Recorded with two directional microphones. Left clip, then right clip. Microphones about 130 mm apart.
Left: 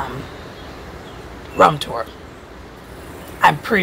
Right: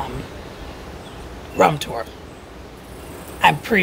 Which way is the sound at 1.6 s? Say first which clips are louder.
Left 3 dB; 15° right (ahead or behind).